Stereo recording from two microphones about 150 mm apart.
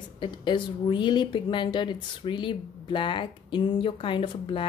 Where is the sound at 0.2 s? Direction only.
30° left (ahead or behind).